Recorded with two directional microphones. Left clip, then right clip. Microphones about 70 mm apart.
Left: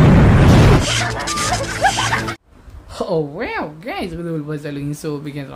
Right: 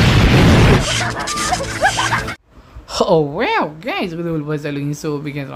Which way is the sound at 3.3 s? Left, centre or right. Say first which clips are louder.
Right 7 dB; right.